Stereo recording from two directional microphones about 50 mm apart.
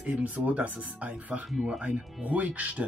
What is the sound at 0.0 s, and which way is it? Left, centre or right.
Speech, right.